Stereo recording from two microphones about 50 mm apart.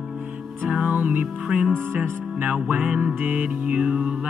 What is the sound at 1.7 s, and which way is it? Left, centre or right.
Music, right.